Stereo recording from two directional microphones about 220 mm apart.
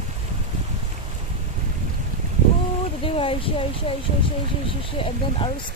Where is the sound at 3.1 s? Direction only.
25° left (ahead or behind).